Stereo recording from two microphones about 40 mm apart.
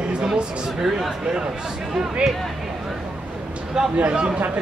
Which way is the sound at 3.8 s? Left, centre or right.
Centre.